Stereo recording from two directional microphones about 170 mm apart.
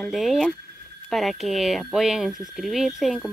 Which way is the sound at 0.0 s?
Centre (ahead or behind).